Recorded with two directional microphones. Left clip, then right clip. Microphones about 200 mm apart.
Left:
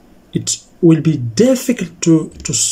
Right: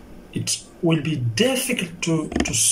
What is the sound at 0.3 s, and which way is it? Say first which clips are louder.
Speech: left 6 dB; 55° left (ahead or behind).